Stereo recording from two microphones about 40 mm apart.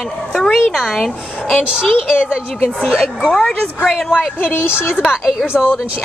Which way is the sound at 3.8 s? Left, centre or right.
Centre.